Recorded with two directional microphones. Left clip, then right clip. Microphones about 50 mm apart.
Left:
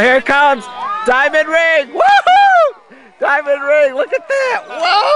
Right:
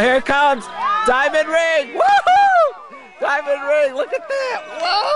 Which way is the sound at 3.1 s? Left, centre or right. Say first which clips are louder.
Left 5 dB; left.